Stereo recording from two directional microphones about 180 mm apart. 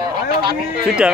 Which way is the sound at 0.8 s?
5° right (ahead or behind).